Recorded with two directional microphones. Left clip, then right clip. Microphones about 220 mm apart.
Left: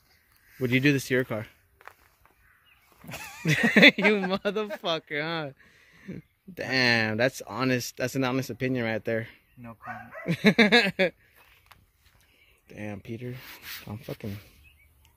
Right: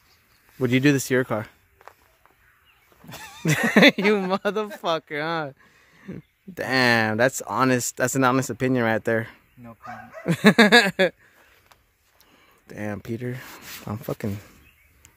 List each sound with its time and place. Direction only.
0.6 s speech: 20° right (ahead or behind)
3.1 s a sound: 15° left (ahead or behind)
3.4 s speech: 20° right (ahead or behind)
12.6 s speech: 30° right (ahead or behind)